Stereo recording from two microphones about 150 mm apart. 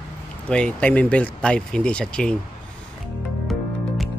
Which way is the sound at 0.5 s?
5° left (ahead or behind).